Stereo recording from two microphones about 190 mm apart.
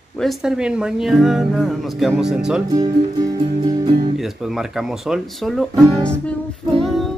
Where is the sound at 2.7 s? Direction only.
20° right (ahead or behind).